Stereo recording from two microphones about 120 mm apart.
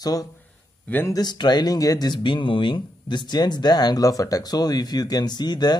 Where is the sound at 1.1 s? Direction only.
35° left (ahead or behind).